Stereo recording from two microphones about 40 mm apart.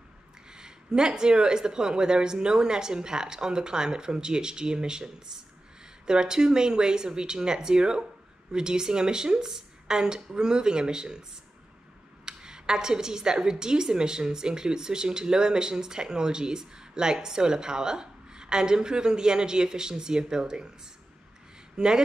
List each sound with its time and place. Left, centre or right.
0.5 s a woman's voice: centre
12.3 s a woman's voice: centre
21.7 s a woman's voice: centre